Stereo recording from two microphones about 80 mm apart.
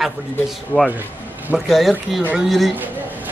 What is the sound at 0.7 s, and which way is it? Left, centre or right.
Speech, left.